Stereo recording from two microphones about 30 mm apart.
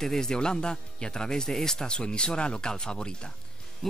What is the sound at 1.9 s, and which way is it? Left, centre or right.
Speech, left.